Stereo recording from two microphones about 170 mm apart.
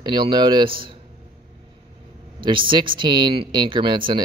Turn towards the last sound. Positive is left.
turn(degrees=-30)  # may be behind; listen again after turning